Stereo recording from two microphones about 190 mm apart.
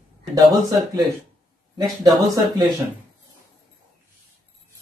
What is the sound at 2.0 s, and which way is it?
Speech, 20° right (ahead or behind).